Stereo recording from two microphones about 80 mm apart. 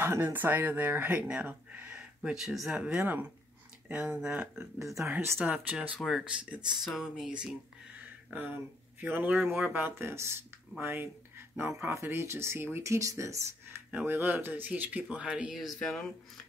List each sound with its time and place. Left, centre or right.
0.0 s speech: right; by 2.8 s centre
2.8 s speech: centre
5.9 s speech: centre
6.2 s speech: centre
8.0 s a sound: right
9.0 s speech: right
15.5 s speech: centre
15.8 s speech: centre